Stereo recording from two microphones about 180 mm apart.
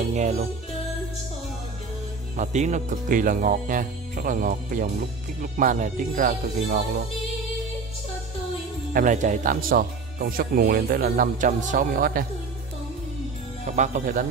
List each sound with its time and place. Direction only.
0.1 s speech: 40° right (ahead or behind)
2.3 s speech: 40° right (ahead or behind)
8.9 s speech: 45° right (ahead or behind)
13.7 s speech: 45° right (ahead or behind)